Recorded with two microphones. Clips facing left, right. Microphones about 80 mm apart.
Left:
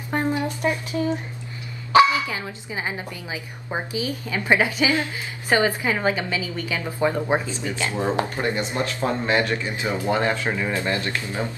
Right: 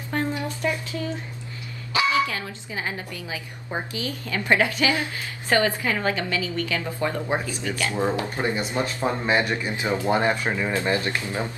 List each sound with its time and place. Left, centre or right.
0.1 s a sound: left
2.1 s a woman's voice: centre
8.4 s speech: right